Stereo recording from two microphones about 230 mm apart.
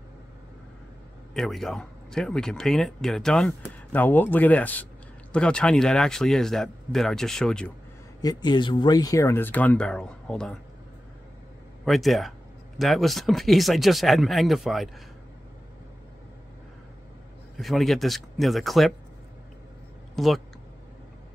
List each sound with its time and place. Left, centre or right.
1.3 s speech: centre
8.2 s speech: centre
11.8 s speech: centre
17.6 s speech: centre
20.2 s speech: centre